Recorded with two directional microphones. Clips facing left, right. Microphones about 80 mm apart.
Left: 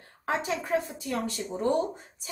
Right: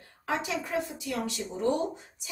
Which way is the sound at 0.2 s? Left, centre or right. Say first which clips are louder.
Left 2 dB; left.